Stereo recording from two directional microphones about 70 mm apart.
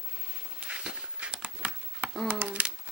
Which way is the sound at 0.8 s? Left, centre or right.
Centre.